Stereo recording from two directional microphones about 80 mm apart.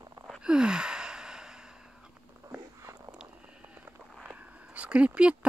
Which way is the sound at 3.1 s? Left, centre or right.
Centre.